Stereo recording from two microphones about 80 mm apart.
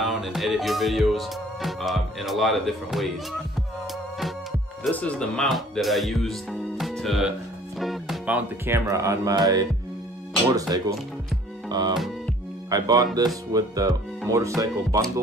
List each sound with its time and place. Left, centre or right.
0.0 s music: centre
4.9 s speech: centre
5.5 s speech: centre
7.8 s music: centre
8.8 s speech: right
11.7 s music: right
12.6 s speech: right